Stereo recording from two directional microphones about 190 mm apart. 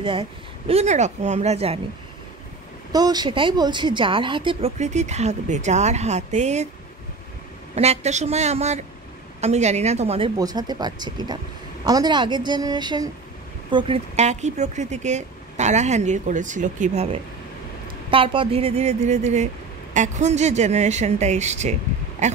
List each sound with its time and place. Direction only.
0.0 s speech: 25° right (ahead or behind)
2.9 s speech: 20° right (ahead or behind); by 6.7 s 35° right (ahead or behind)
7.7 s speech: 35° right (ahead or behind)